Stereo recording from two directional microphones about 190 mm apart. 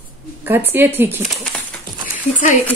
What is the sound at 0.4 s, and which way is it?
Speech, 10° right (ahead or behind).